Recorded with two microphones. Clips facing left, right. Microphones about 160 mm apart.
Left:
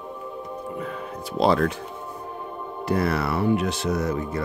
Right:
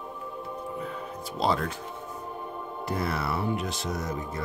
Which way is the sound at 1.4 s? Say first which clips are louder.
Left 7 dB; 70° left (ahead or behind).